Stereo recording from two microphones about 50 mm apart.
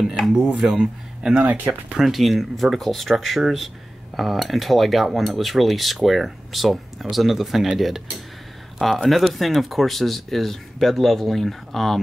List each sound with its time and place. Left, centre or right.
0.0 s dishes: centre
0.6 s speech: centre
1.4 s speech: right
2.0 s speech: centre